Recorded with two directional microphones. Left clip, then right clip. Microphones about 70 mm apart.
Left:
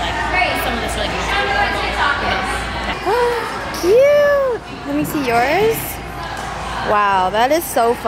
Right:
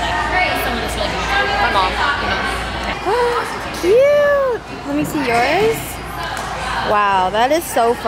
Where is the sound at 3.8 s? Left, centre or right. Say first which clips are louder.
Even; centre.